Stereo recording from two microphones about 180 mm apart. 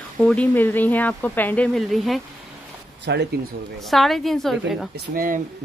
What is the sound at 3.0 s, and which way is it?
Speech, 75° right (ahead or behind).